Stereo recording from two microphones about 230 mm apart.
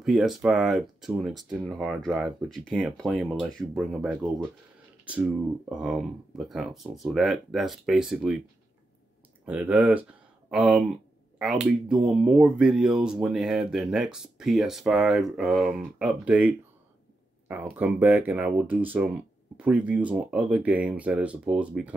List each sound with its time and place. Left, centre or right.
0.0 s speech: centre
9.5 s speech: centre
17.7 s speech: centre